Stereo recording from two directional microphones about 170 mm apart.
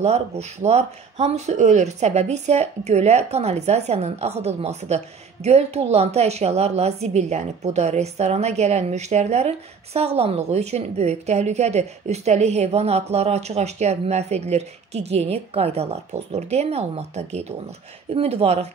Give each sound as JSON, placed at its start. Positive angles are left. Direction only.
{"t": 0.0, "sound": "speech", "side_deg": -40}